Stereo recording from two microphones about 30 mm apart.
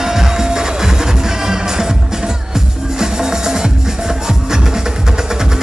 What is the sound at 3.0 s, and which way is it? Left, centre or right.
Music, centre.